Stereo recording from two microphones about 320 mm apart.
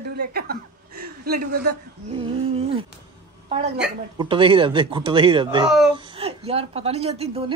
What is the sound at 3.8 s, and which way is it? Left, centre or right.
A woman's voice, centre.